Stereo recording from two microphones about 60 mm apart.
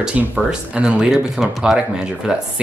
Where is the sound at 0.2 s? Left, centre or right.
Centre.